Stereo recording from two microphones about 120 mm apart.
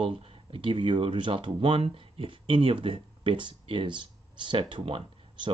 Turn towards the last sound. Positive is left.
turn(degrees=-45)  # may be behind; listen again after turning